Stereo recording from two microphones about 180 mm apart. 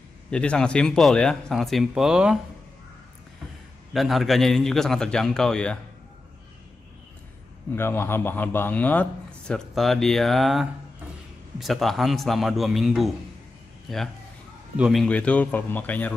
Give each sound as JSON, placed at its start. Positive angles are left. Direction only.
{"t": 0.3, "sound": "speech", "side_deg": 5}
{"t": 3.9, "sound": "speech", "side_deg": 0}
{"t": 7.7, "sound": "speech", "side_deg": 10}